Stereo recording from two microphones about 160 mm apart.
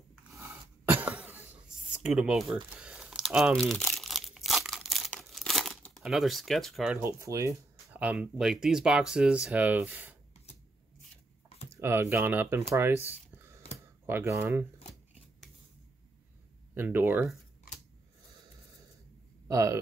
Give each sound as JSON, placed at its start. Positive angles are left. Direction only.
{"t": 0.4, "sound": "throat clearing", "side_deg": -10}
{"t": 6.0, "sound": "speech", "side_deg": 0}
{"t": 7.0, "sound": "speech", "side_deg": -15}
{"t": 11.7, "sound": "speech", "side_deg": -15}
{"t": 12.7, "sound": "a sound", "side_deg": -15}
{"t": 14.0, "sound": "speech", "side_deg": -15}
{"t": 16.7, "sound": "speech", "side_deg": -10}
{"t": 19.4, "sound": "speech", "side_deg": -20}